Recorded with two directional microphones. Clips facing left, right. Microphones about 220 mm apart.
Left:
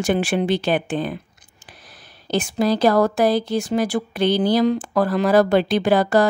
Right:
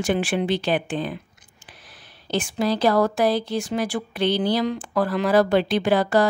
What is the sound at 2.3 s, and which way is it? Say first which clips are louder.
Speech: left 3 dB; 40° left (ahead or behind).